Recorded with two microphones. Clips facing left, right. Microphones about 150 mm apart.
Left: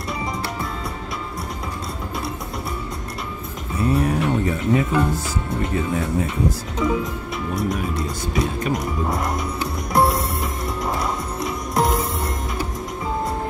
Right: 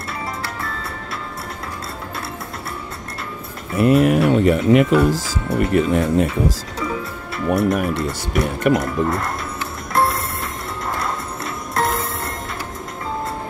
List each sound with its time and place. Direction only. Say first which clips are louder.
3.7 s speech: right 6 dB; 90° right
6.8 s speech: left 4 dB; 10° left (ahead or behind)
7.4 s speech: right 7 dB; 65° right (ahead or behind)
10.9 s music: right 1 dB; 20° left (ahead or behind)
11.8 s music: left 1 dB; centre (ahead or behind)